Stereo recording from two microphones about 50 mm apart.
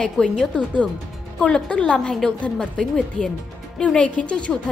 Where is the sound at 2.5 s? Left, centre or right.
Centre.